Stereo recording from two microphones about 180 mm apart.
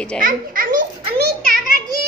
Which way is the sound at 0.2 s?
50° right (ahead or behind).